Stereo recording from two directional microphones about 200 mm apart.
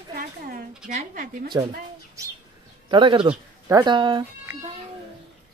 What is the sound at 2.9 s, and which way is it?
Speech, 25° right (ahead or behind).